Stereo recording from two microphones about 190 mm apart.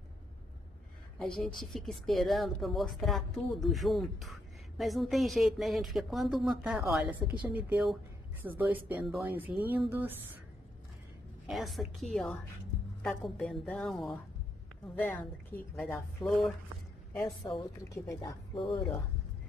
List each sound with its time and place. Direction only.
1.2 s a woman's voice: 5° left (ahead or behind)
11.4 s a woman's voice: centre (ahead or behind)
15.5 s speech: 10° left (ahead or behind)
18.7 s speech: 10° left (ahead or behind)